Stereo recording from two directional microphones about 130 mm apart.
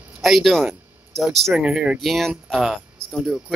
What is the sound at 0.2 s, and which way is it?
Speech, centre (ahead or behind).